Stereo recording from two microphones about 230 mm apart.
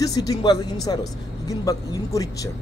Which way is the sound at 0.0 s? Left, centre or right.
Centre.